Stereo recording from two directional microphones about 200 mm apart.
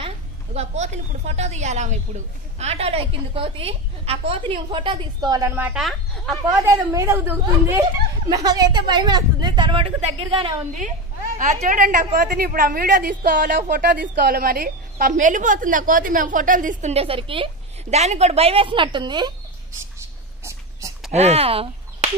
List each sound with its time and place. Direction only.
0.6 s speech: 35° right (ahead or behind); by 6.3 s centre (ahead or behind)
6.6 s speech: 15° right (ahead or behind)
11.3 s a woman's voice: 40° right (ahead or behind); by 19.9 s 20° right (ahead or behind)
21.1 s speech: 30° right (ahead or behind)